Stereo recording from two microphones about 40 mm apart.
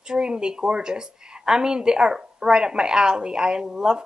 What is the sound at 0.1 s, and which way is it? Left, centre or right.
A woman's voice, right.